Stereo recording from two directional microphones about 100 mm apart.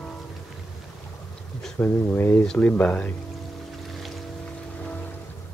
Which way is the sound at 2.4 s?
5° left (ahead or behind).